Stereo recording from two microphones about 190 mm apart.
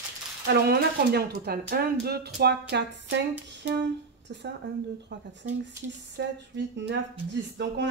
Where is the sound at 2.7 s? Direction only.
70° right (ahead or behind).